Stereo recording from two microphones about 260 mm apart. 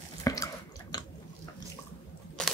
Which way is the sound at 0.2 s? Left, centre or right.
Centre.